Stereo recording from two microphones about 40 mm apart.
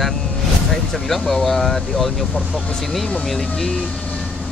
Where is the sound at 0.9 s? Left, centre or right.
Centre.